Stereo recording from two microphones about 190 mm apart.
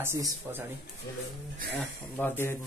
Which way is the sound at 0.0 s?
15° right (ahead or behind).